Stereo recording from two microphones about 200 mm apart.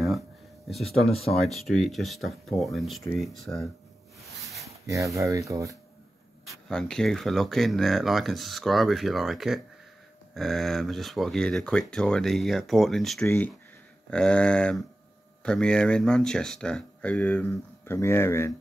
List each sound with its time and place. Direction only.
0.7 s speech: centre (ahead or behind)
4.6 s speech: 15° right (ahead or behind)
6.4 s speech: centre (ahead or behind)